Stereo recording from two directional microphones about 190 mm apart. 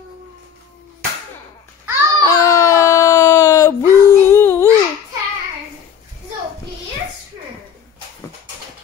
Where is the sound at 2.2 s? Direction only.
15° left (ahead or behind).